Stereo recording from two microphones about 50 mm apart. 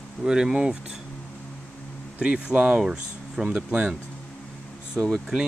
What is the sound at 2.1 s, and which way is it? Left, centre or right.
Speech, centre.